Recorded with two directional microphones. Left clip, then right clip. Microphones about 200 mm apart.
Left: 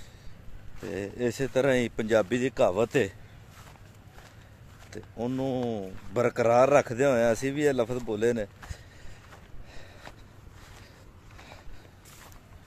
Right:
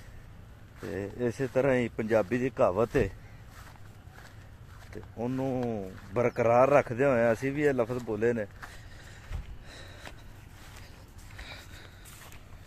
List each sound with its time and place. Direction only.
0.9 s speech: 15° left (ahead or behind)
4.9 s speech: 15° left (ahead or behind)
9.3 s snort: 10° right (ahead or behind)
11.3 s a sound: centre (ahead or behind)